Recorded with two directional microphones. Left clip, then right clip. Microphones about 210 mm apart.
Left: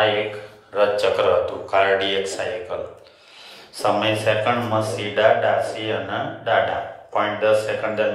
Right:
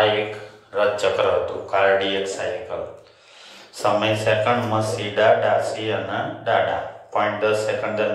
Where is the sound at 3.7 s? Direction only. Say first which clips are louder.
Even; 25° left (ahead or behind).